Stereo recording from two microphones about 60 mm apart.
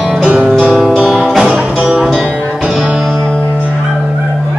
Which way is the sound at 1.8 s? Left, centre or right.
Centre.